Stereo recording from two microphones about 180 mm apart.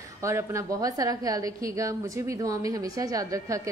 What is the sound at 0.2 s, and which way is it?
A woman's voice, 15° right (ahead or behind).